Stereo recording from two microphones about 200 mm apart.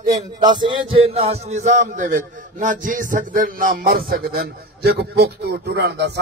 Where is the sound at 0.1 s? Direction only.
20° right (ahead or behind).